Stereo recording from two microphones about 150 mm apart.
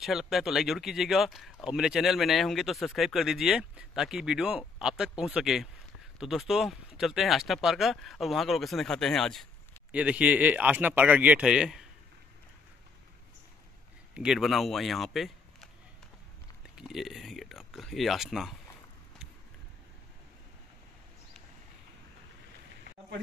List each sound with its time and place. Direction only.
0.0 s speech: centre (ahead or behind)
9.9 s speech: 10° right (ahead or behind)
14.1 s speech: 5° right (ahead or behind)
16.7 s speech: 5° right (ahead or behind)